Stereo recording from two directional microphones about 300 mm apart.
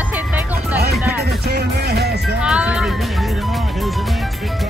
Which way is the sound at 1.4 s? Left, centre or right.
Right.